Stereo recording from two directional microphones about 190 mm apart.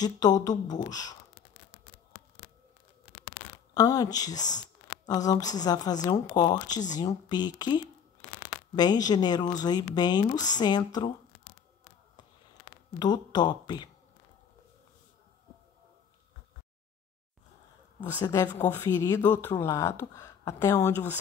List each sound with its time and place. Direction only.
0.0 s a woman's voice: 20° left (ahead or behind)
3.7 s a woman's voice: 20° left (ahead or behind)
13.0 s a woman's voice: 20° left (ahead or behind)
18.2 s a woman's voice: 20° left (ahead or behind)